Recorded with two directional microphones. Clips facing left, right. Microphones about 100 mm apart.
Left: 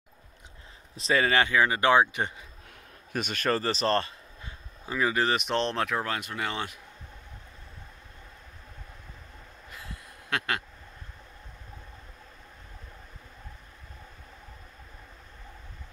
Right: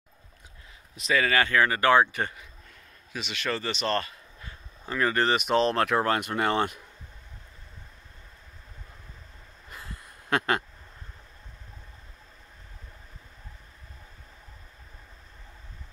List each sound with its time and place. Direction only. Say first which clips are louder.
0.9 s speech: even; 30° left (ahead or behind)
3.1 s a man's voice: left 4 dB; 50° left (ahead or behind); by 4.6 s 25° left (ahead or behind)
4.8 s speech: right 1 dB; 5° left (ahead or behind)
5.9 s speech: right 6 dB; 55° right (ahead or behind)
10.3 s speech: right 5 dB; 35° right (ahead or behind)